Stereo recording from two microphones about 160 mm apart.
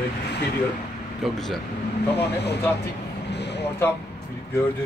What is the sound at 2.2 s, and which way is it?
Speech, 90° left.